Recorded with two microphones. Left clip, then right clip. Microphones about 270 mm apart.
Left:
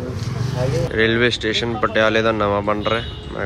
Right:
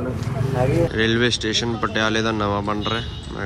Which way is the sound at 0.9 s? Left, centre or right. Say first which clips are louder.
Left 3 dB; centre.